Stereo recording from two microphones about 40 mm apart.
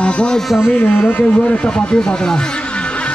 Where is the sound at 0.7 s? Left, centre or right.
Left.